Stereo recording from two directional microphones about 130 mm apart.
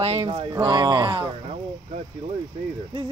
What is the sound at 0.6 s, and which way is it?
Speech, 35° right (ahead or behind).